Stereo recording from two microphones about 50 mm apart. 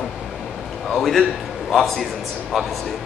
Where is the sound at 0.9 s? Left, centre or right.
Centre.